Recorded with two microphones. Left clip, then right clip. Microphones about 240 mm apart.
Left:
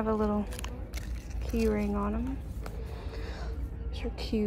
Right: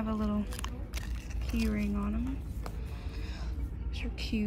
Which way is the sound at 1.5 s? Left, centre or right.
Centre.